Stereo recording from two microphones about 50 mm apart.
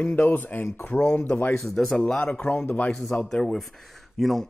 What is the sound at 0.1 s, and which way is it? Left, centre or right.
Speech, left.